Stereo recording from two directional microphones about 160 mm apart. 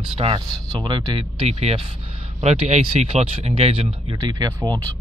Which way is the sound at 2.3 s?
45° right (ahead or behind).